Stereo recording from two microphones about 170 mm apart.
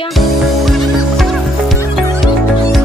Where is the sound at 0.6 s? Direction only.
Centre (ahead or behind).